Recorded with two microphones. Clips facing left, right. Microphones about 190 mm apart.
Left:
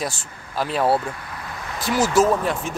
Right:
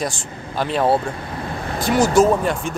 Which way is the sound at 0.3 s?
25° right (ahead or behind).